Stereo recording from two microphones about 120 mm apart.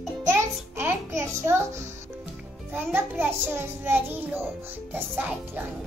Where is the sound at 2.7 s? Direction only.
15° right (ahead or behind).